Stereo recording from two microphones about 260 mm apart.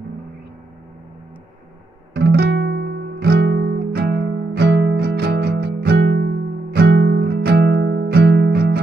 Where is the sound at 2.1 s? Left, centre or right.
Right.